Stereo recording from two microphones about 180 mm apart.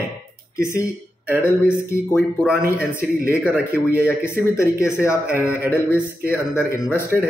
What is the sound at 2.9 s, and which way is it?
Speech, 55° right (ahead or behind).